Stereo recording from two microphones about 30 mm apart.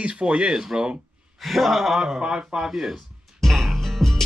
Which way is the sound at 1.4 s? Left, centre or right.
Centre.